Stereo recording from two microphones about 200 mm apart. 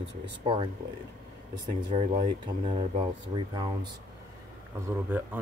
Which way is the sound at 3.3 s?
20° right (ahead or behind).